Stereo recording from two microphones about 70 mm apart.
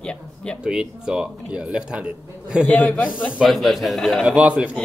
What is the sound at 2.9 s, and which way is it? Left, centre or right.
Speech, centre.